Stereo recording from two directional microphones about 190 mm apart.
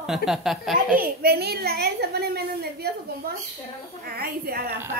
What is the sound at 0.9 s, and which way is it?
A woman's voice, 55° right (ahead or behind).